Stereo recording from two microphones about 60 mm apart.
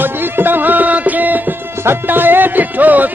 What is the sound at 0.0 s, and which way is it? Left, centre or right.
Music, right.